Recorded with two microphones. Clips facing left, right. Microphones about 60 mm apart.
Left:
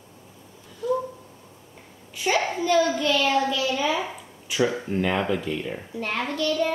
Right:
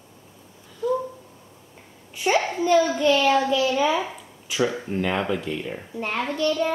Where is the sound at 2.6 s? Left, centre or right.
Right.